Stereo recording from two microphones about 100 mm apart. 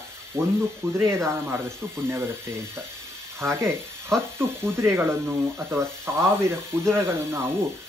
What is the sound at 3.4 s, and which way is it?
Speech, 25° right (ahead or behind).